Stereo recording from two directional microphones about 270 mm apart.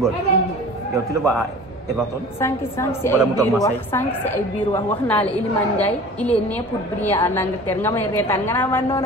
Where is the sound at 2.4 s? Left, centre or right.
Centre.